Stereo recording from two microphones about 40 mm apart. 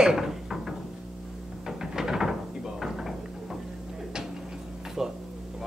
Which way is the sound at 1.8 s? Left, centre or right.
Centre.